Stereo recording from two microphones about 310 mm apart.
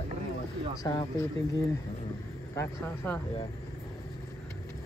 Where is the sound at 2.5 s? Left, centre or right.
Centre.